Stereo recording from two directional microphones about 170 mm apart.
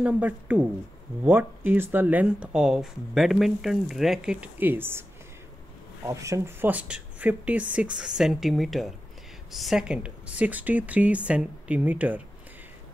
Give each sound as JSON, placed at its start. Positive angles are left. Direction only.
{"t": 0.0, "sound": "speech", "side_deg": -10}
{"t": 6.0, "sound": "speech", "side_deg": -20}